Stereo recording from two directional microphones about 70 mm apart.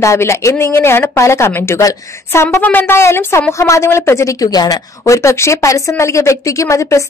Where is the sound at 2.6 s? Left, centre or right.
Left.